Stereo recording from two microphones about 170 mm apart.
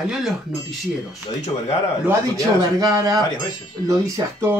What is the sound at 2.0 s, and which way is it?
Speech, 20° right (ahead or behind).